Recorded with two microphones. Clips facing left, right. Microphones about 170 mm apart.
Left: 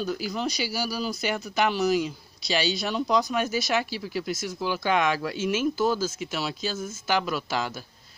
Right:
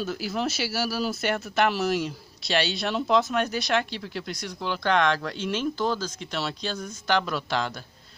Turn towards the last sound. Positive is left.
turn(degrees=5)  # may be behind; listen again after turning